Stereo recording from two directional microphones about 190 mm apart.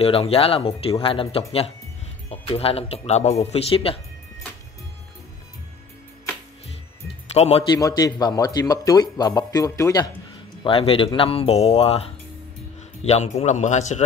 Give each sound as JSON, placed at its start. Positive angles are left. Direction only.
{"t": 0.0, "sound": "speech", "side_deg": 30}
{"t": 7.3, "sound": "speech", "side_deg": 35}
{"t": 7.7, "sound": "speech", "side_deg": 20}
{"t": 10.6, "sound": "speech", "side_deg": 30}